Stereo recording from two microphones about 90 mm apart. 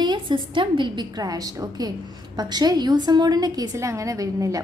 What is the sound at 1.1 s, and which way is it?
A woman's voice, 45° right (ahead or behind).